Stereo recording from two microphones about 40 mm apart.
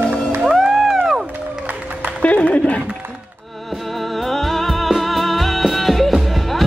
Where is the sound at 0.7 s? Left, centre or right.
Centre.